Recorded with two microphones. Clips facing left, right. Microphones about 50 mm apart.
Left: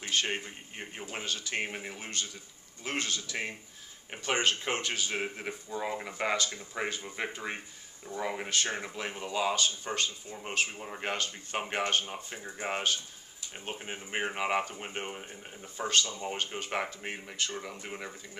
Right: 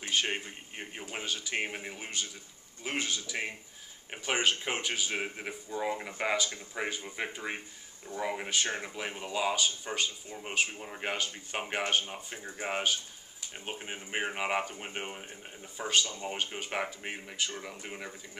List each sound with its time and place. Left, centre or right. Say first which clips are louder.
0.0 s speech: even; centre